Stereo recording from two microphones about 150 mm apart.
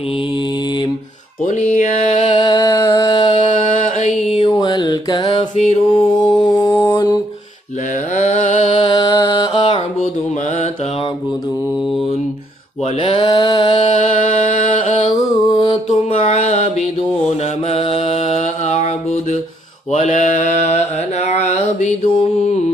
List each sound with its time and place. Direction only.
1.4 s music: 55° left (ahead or behind)
2.2 s music: 30° left (ahead or behind)
3.4 s mantra: 55° left (ahead or behind)
4.5 s mantra: 30° left (ahead or behind)
5.6 s music: 50° left (ahead or behind)
6.2 s mantra: 30° left (ahead or behind)
8.2 s music: 50° left (ahead or behind)
8.8 s mantra: 30° left (ahead or behind)
13.0 s a sound: 35° left (ahead or behind)
13.8 s music: 50° left (ahead or behind)
15.5 s mantra: 40° left (ahead or behind)
19.9 s mantra: 50° left (ahead or behind)